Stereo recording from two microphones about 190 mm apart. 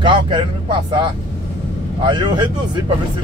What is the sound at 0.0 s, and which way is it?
Speech, 25° right (ahead or behind).